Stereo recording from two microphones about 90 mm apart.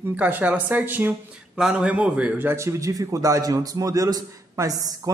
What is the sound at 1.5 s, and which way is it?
A man's voice, 10° right (ahead or behind).